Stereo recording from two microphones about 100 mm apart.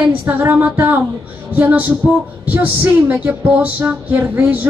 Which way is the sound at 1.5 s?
15° right (ahead or behind).